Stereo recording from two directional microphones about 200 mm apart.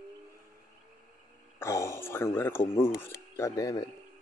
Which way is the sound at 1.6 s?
15° left (ahead or behind).